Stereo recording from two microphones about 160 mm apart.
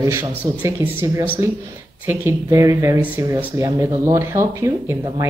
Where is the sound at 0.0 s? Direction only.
15° right (ahead or behind).